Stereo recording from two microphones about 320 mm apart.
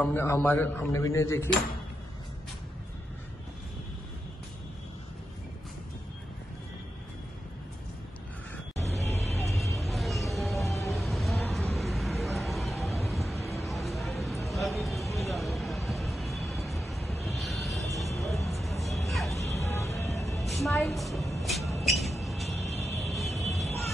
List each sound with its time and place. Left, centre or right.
0.0 s speech: centre
8.7 s vehicle: centre
18.1 s music: centre
22.8 s vehicle: centre